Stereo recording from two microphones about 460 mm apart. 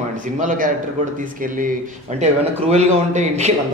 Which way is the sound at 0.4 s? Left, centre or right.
Centre.